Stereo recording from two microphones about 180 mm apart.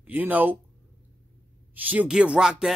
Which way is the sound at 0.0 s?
10° right (ahead or behind).